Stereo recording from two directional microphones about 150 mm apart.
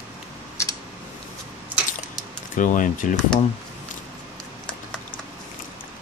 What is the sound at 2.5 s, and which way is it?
Speech, 60° left (ahead or behind).